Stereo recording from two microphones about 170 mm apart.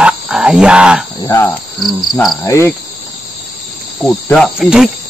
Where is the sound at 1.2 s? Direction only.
20° left (ahead or behind).